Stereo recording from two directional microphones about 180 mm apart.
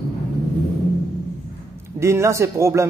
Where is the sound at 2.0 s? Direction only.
15° right (ahead or behind).